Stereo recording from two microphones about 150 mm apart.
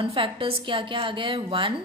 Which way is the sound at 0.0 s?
35° right (ahead or behind).